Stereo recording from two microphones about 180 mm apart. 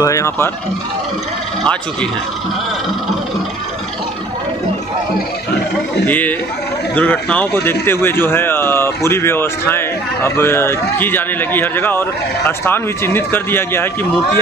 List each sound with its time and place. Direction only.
0.0 s speech: 15° left (ahead or behind)
6.0 s speech: 10° left (ahead or behind)